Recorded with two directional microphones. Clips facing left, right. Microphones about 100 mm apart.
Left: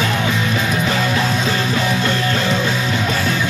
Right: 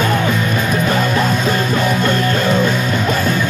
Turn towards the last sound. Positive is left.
turn(degrees=-50)  # may be behind; listen again after turning